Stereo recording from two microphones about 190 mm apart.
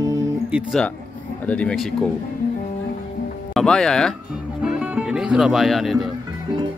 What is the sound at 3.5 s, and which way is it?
Speech, 5° left (ahead or behind).